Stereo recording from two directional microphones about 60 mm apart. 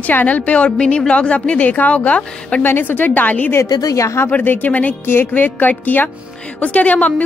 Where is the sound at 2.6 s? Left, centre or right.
Left.